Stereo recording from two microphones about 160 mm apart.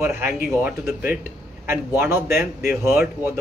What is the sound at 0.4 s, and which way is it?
A man's voice, 10° right (ahead or behind).